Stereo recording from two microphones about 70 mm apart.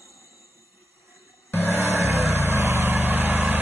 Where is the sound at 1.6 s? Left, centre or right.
Right.